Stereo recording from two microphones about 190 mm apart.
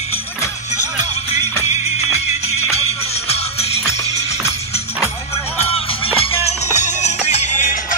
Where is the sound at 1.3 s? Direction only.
35° left (ahead or behind).